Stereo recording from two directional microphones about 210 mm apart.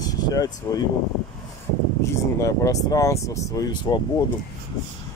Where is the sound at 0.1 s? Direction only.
20° left (ahead or behind).